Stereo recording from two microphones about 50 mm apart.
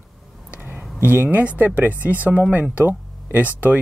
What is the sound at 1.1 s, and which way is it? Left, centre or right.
Speech, right.